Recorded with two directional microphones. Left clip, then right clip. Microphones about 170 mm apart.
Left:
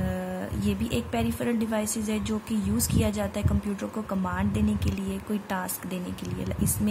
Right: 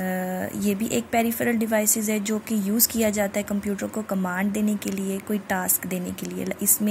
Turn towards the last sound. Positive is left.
turn(degrees=-15)  # may be behind; listen again after turning